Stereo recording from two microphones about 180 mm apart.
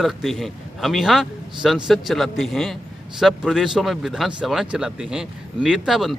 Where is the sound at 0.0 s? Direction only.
Centre (ahead or behind).